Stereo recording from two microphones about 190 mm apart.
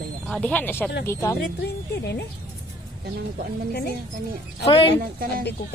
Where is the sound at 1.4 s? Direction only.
60° left (ahead or behind).